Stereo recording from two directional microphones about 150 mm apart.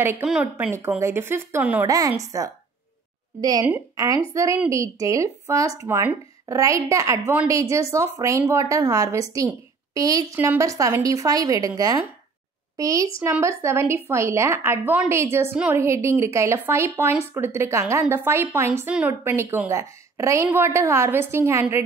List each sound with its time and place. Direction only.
0.0 s speech: 10° right (ahead or behind)
1.9 s a woman's voice: 25° right (ahead or behind)
3.3 s a woman's voice: 25° right (ahead or behind)